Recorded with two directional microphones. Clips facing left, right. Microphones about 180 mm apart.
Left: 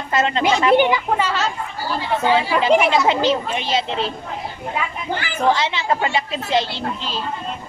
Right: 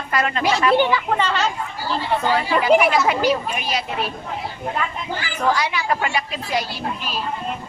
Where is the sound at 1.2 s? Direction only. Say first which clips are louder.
Even; 5° left (ahead or behind).